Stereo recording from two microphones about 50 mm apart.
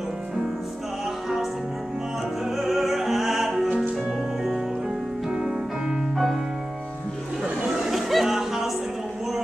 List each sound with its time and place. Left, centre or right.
2.5 s opera: centre
5.3 s music: centre
7.4 s music: centre
7.9 s music: centre